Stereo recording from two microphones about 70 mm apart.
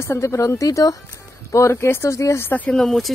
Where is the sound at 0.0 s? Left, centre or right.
Left.